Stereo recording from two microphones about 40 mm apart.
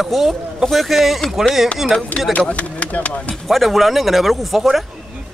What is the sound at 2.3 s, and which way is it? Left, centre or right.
Speech, left.